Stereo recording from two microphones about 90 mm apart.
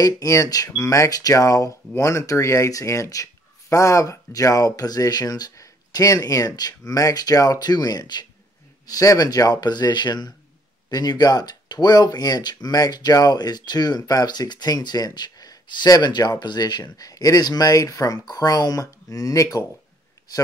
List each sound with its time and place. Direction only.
0.0 s speech: 40° left (ahead or behind)
8.8 s speech: 40° left (ahead or behind)